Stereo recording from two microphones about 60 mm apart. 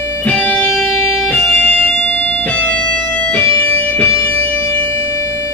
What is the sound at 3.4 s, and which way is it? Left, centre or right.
Music, left.